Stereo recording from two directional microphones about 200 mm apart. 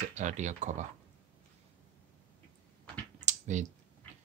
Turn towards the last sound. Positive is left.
turn(degrees=-35)  # may be behind; listen again after turning